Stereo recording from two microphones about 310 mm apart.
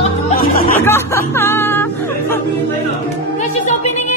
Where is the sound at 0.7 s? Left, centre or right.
Centre.